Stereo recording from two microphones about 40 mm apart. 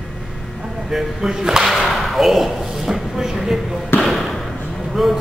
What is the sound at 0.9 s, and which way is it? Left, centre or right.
Speech, centre.